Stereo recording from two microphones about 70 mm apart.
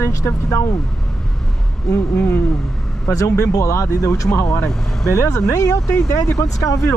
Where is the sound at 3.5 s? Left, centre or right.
Left.